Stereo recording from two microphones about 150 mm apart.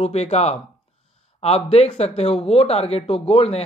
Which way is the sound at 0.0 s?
45° left (ahead or behind).